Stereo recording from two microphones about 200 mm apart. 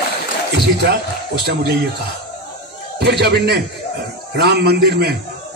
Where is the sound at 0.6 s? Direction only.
55° right (ahead or behind).